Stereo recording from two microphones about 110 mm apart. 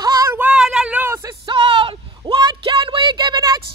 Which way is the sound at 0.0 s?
35° right (ahead or behind).